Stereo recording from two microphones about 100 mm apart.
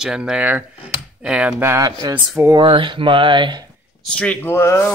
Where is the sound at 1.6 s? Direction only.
25° right (ahead or behind).